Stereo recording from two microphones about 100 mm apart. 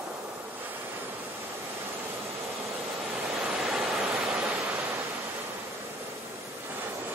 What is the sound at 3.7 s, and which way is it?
Waterfall, 5° right (ahead or behind).